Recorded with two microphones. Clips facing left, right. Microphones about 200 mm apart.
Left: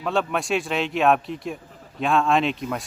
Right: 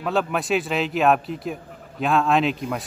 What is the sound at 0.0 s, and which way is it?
Speech, centre (ahead or behind).